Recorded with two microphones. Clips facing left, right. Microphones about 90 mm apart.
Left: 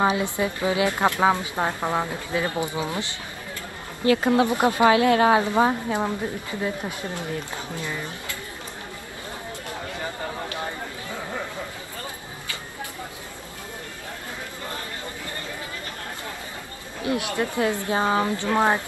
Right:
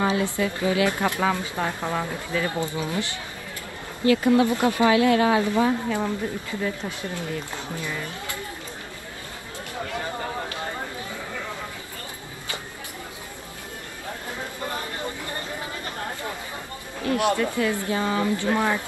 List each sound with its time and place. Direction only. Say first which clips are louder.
0.0 s speech: left 1 dB; 20° left (ahead or behind)
4.0 s speech: even; 30° right (ahead or behind)
4.4 s speech: even; 25° left (ahead or behind)
4.8 s a woman's voice: left 2 dB; 35° left (ahead or behind)
6.6 s speech: left 1 dB; 20° left (ahead or behind)
17.0 s speech: right 3 dB; 20° left (ahead or behind)